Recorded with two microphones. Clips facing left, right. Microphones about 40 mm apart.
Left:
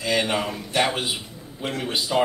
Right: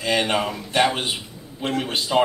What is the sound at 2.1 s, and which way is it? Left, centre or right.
Speech, centre.